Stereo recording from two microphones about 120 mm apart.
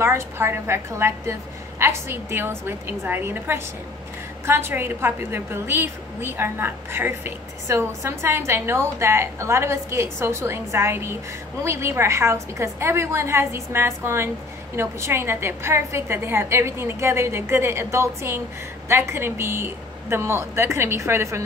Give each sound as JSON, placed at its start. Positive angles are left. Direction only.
{"t": 0.0, "sound": "a woman's voice", "side_deg": -20}